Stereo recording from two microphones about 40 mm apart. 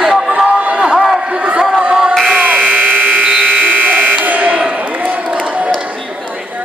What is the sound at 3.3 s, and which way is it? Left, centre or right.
Electric shaver, right.